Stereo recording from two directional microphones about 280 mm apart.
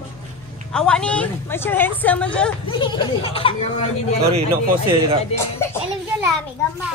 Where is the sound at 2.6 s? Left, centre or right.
Centre.